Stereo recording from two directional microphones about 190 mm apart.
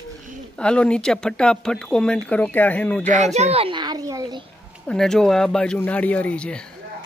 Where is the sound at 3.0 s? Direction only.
40° right (ahead or behind); by 4.4 s 20° right (ahead or behind).